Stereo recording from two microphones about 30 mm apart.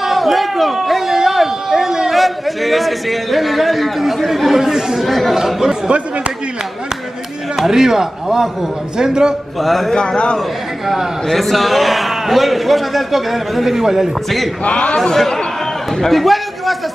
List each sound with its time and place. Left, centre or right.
0.0 s a sound: centre
2.1 s a man's voice: centre
5.0 s a man's voice: centre
7.5 s a man's voice: centre
9.6 s a man's voice: centre
9.9 s a man's voice: left
11.2 s a man's voice: centre
14.6 s a man's voice: left
15.0 s a man's voice: centre